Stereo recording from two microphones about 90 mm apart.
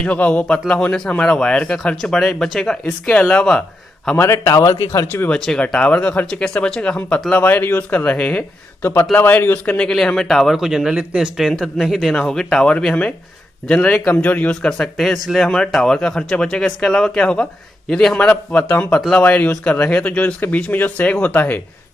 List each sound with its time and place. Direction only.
0.0 s a man's voice: 15° left (ahead or behind)
4.2 s a man's voice: 35° left (ahead or behind)
5.1 s speech: 20° left (ahead or behind)
5.4 s a man's voice: 5° left (ahead or behind)